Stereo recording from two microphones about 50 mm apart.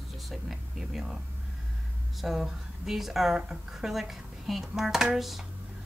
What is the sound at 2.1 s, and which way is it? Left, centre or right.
Speech, centre.